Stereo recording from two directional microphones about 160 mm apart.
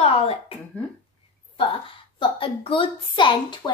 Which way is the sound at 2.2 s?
35° left (ahead or behind).